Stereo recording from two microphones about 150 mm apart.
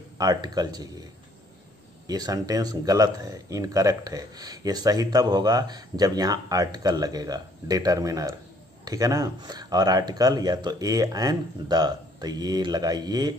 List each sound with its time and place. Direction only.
0.2 s speech: 25° right (ahead or behind)
2.0 s speech: 25° right (ahead or behind)